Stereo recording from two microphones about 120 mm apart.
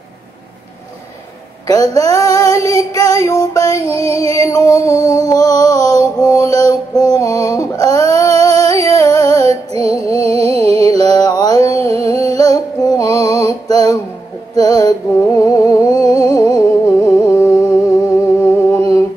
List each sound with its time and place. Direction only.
1.7 s music: 30° left (ahead or behind)
4.1 s music: 55° right (ahead or behind)
4.4 s music: 30° left (ahead or behind)
9.4 s music: 60° right (ahead or behind)
9.9 s music: 30° left (ahead or behind)
10.3 s a sound: 55° right (ahead or behind)
11.1 s mantra: 30° left (ahead or behind)
12.0 s a sound: 30° left (ahead or behind)
12.4 s music: 30° left (ahead or behind)
16.3 s a sound: 30° left (ahead or behind)
18.7 s humming: 25° left (ahead or behind)